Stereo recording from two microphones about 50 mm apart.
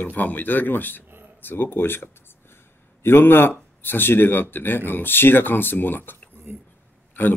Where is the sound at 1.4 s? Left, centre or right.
Left.